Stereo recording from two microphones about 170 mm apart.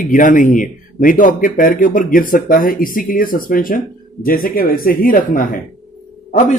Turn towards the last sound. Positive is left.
turn(degrees=45)  # may be behind; listen again after turning